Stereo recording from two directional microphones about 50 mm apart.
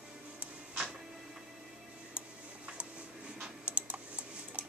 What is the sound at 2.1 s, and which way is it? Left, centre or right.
Tick-tock, right.